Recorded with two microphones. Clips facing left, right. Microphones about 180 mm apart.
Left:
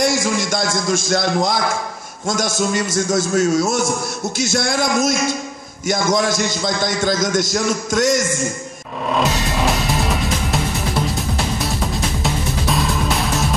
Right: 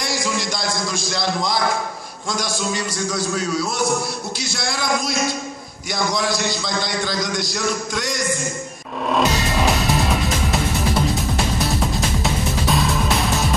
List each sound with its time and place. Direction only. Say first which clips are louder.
0.2 s a man's voice: left 4 dB; 50° left (ahead or behind)
9.1 s music: even; centre (ahead or behind)
11.6 s music: right 1 dB; centre (ahead or behind)